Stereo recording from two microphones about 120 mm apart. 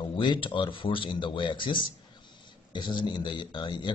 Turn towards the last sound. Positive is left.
turn(degrees=40)  # may be behind; listen again after turning